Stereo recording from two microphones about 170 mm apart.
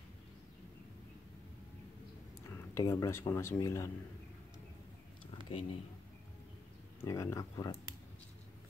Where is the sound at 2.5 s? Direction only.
15° left (ahead or behind).